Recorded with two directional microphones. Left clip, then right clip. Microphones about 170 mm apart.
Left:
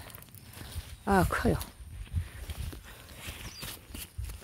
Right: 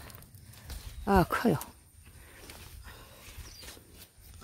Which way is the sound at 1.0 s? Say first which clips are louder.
Right 1 dB; 20° right (ahead or behind).